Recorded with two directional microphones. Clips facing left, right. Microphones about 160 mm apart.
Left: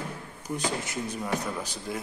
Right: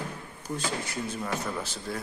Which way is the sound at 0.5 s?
20° left (ahead or behind).